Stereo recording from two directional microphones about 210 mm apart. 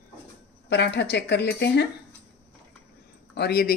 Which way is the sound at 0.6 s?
55° left (ahead or behind).